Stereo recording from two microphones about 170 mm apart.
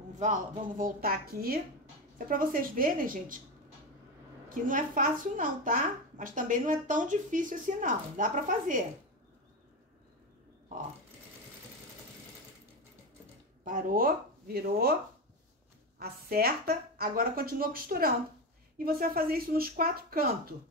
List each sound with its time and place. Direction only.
0.1 s speech: 45° right (ahead or behind)
4.5 s a child's voice: 50° right (ahead or behind)
13.7 s speech: 55° right (ahead or behind)
16.0 s speech: 65° right (ahead or behind)